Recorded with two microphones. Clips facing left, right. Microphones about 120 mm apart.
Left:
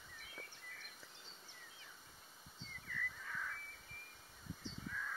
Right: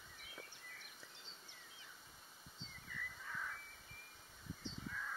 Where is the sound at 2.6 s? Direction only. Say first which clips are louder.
Left 4 dB; 15° right (ahead or behind).